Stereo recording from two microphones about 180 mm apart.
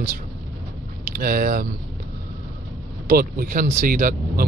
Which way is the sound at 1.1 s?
55° right (ahead or behind).